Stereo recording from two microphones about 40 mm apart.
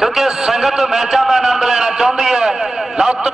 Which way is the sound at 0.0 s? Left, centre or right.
Centre.